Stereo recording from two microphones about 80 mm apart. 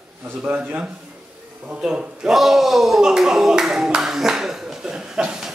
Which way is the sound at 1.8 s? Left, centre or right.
Centre.